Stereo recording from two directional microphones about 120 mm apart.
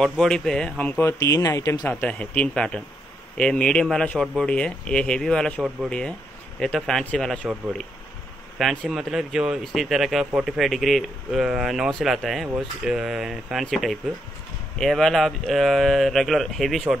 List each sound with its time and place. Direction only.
0.0 s speech: 5° left (ahead or behind)
1.0 s speech: 25° left (ahead or behind)
1.9 s speech: 15° left (ahead or behind)